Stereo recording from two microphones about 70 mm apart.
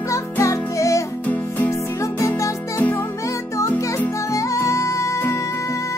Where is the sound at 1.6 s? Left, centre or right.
Left.